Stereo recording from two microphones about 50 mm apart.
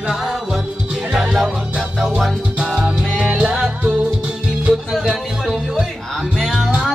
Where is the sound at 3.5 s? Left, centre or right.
Centre.